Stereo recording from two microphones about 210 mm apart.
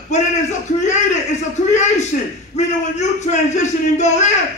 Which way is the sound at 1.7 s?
35° left (ahead or behind).